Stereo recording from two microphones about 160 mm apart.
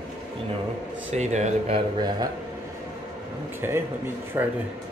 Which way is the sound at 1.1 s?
45° right (ahead or behind).